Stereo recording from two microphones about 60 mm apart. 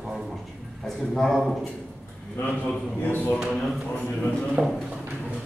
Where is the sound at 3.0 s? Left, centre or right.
Left.